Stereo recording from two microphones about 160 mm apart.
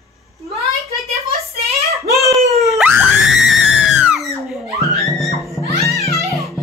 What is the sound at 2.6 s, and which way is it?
Screaming, 5° right (ahead or behind).